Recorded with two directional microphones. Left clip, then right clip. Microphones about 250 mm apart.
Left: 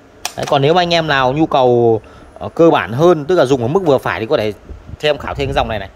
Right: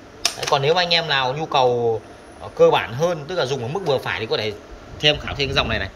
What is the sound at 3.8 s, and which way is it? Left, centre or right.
Speech, left.